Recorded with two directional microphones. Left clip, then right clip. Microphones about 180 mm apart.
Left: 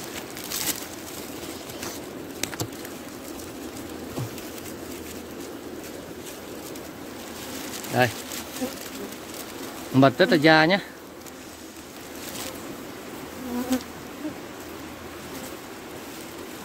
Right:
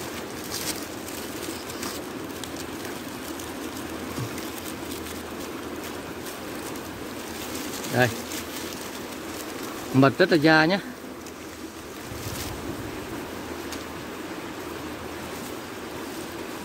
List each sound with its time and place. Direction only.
8.0 s speech: 35° left (ahead or behind)
9.9 s speech: 25° left (ahead or behind)